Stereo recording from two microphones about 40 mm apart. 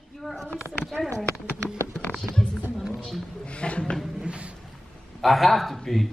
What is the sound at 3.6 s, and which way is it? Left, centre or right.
Speech, left.